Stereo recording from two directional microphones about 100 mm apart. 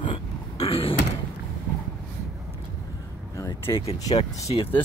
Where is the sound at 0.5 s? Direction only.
75° left (ahead or behind).